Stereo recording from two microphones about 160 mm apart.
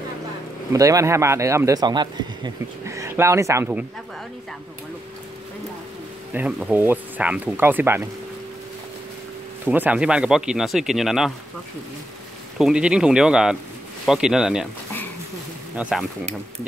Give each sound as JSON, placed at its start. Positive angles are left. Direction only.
{"t": 0.7, "sound": "speech", "side_deg": -20}
{"t": 6.3, "sound": "speech", "side_deg": -10}
{"t": 9.7, "sound": "speech", "side_deg": -10}
{"t": 12.5, "sound": "speech", "side_deg": -5}
{"t": 15.7, "sound": "speech", "side_deg": -5}